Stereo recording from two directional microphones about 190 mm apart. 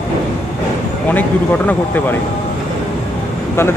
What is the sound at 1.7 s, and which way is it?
Speech, 10° left (ahead or behind).